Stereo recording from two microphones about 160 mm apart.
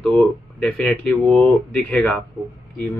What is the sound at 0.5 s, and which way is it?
Speech, centre (ahead or behind).